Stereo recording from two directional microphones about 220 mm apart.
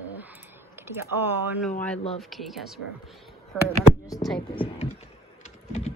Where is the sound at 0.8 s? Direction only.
10° right (ahead or behind).